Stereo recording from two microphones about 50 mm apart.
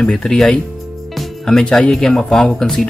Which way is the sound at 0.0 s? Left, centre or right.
Centre.